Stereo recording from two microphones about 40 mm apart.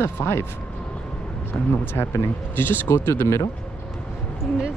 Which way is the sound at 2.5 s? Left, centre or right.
Left.